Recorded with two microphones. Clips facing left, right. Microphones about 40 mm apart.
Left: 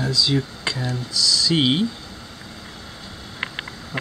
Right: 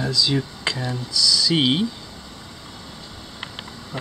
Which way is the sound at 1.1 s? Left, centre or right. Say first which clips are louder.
Even; centre.